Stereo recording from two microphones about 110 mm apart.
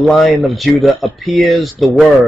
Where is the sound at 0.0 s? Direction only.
Centre (ahead or behind).